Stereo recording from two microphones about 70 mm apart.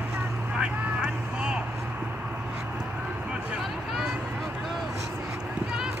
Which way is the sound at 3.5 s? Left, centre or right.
Centre.